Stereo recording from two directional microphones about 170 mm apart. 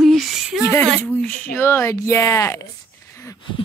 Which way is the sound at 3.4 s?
30° left (ahead or behind).